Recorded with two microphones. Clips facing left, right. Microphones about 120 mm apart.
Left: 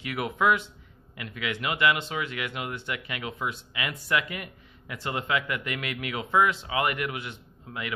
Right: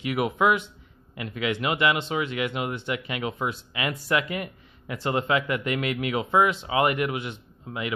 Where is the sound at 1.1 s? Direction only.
30° right (ahead or behind).